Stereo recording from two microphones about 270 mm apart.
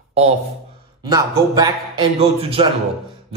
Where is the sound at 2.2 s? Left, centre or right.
Right.